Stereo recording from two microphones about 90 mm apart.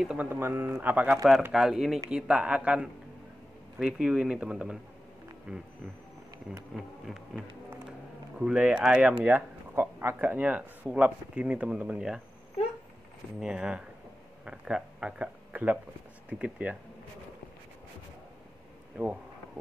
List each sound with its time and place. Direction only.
0.2 s speech: 25° right (ahead or behind)
1.5 s speech: 5° right (ahead or behind)
6.7 s speech: centre (ahead or behind)
8.4 s speech: 10° right (ahead or behind)
13.4 s speech: 10° right (ahead or behind)